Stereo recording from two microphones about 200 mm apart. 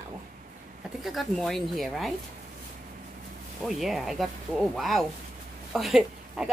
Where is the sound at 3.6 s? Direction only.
Centre (ahead or behind).